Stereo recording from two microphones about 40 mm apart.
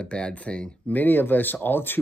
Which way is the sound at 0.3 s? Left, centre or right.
Left.